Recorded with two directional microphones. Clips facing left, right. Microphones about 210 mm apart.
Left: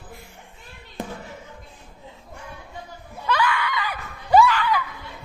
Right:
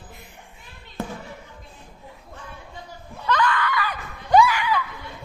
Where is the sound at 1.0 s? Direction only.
15° left (ahead or behind).